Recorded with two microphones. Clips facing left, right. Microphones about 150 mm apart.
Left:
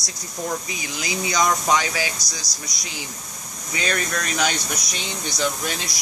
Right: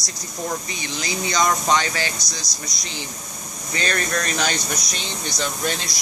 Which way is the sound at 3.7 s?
5° left (ahead or behind).